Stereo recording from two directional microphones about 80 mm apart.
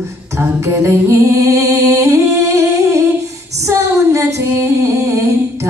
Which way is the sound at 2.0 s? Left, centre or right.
Right.